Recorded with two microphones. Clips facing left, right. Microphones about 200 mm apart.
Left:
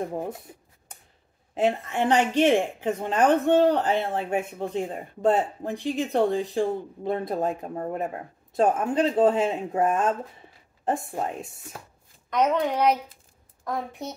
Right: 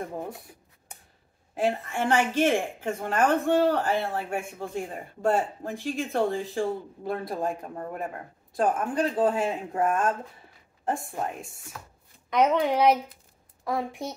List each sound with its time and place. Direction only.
1.5 s speech: 20° left (ahead or behind)
12.3 s a woman's voice: 10° right (ahead or behind)